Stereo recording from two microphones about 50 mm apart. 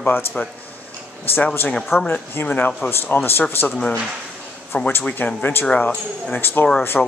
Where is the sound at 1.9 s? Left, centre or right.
Left.